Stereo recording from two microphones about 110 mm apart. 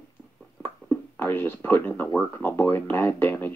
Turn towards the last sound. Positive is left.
turn(degrees=20)  # may be behind; listen again after turning